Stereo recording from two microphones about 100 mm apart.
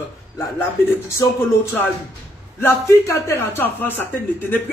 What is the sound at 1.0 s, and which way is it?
Speech, 25° left (ahead or behind).